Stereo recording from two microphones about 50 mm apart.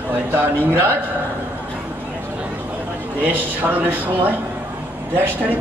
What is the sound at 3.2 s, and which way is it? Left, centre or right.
A man's voice, right.